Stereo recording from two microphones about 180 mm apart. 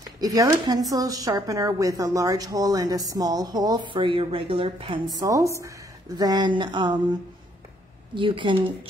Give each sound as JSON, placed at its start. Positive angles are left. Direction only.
{"t": 0.2, "sound": "speech", "side_deg": -20}
{"t": 5.2, "sound": "a woman's voice", "side_deg": -15}
{"t": 8.1, "sound": "speech", "side_deg": -25}